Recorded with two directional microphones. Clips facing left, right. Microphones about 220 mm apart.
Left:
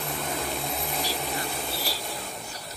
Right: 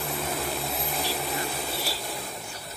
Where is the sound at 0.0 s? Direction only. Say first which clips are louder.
Right 1 dB; centre (ahead or behind).